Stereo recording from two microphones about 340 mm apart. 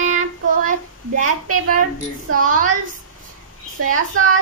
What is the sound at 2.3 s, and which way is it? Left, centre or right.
Speech, right.